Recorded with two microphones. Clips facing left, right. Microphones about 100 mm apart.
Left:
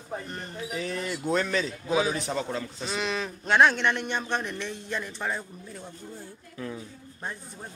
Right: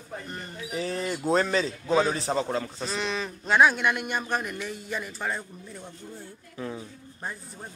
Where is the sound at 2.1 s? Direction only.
35° right (ahead or behind).